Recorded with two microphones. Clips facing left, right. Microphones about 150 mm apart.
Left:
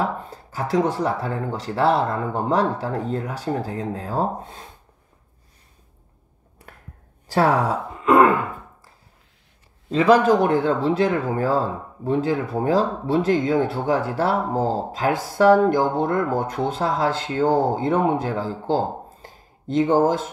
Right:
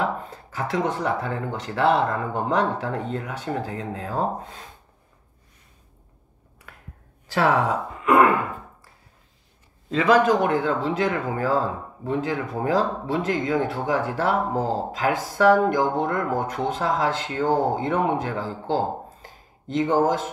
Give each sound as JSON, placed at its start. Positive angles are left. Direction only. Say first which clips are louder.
{"t": 0.0, "sound": "speech", "louder": "left 1 dB", "side_deg": 35}
{"t": 7.2, "sound": "speech", "louder": "left 2 dB", "side_deg": 40}
{"t": 9.8, "sound": "speech", "louder": "left 3 dB", "side_deg": 30}
{"t": 19.2, "sound": "a sound", "louder": "left 5 dB", "side_deg": 35}